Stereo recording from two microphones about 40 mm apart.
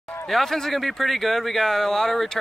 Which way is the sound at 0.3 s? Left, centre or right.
Centre.